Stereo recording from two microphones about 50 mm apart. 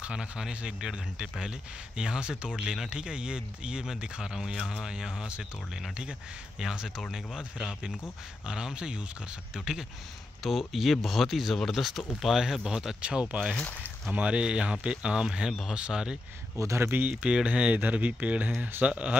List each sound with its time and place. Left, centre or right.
0.0 s speech: centre
8.5 s speech: centre
10.7 s speech: centre
16.5 s speech: right
16.8 s speech: right
17.1 s speech: right